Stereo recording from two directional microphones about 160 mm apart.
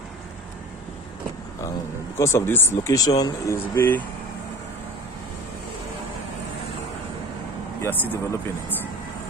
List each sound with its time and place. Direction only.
2.1 s speech: 15° left (ahead or behind)
3.7 s speech: 15° left (ahead or behind)
7.8 s speech: 15° left (ahead or behind)